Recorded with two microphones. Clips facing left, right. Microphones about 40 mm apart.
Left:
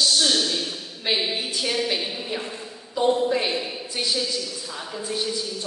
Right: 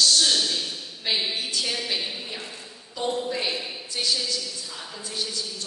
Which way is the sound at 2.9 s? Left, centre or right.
Left.